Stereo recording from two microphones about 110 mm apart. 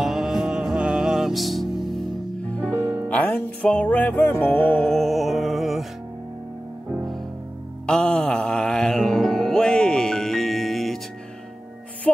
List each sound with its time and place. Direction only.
0.0 s music: 5° right (ahead or behind)
2.7 s music: 20° right (ahead or behind)
3.1 s music: 15° left (ahead or behind)
4.8 s music: centre (ahead or behind)
7.8 s music: 10° left (ahead or behind)